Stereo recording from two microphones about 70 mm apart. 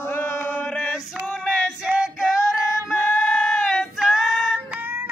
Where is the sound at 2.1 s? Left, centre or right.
Centre.